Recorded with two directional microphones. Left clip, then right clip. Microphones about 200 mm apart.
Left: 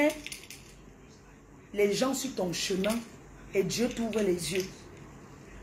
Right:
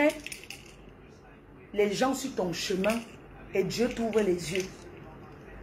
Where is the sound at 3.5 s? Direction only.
15° left (ahead or behind).